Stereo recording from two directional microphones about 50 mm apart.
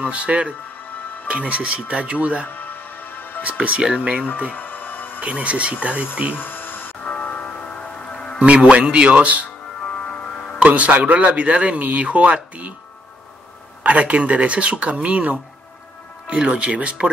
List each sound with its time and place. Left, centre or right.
0.0 s speech: right
2.4 s music: left
3.4 s speech: right
4.5 s music: left
5.2 s speech: right
6.3 s a sound: left
7.1 s music: left
8.4 s speech: right
9.8 s music: left
10.6 s speech: right
13.8 s speech: right